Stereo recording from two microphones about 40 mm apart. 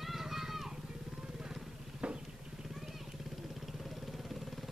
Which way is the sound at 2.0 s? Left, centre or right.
Right.